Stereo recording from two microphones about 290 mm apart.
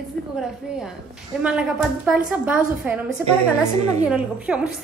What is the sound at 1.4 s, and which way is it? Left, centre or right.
Speech, centre.